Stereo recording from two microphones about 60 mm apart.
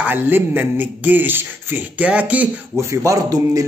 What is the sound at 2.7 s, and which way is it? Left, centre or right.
Speech, right.